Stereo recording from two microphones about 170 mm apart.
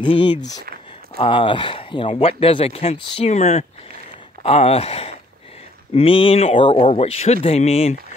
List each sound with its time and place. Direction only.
0.0 s speech: 30° left (ahead or behind)